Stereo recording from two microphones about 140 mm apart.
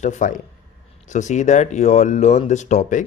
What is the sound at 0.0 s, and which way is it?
A man's voice, 60° left (ahead or behind).